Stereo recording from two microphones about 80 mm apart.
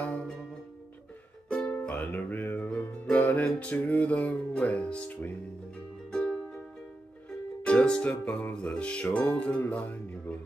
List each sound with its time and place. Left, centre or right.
0.0 s music: centre
1.5 s music: centre
7.6 s music: centre